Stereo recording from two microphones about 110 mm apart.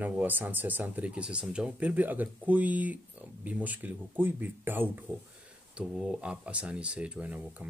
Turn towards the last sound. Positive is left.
turn(degrees=-15)  # may be behind; listen again after turning